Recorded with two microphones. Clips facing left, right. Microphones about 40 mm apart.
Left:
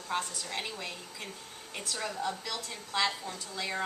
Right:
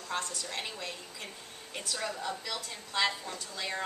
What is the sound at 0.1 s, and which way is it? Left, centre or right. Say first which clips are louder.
A woman's voice: left 2 dB; centre.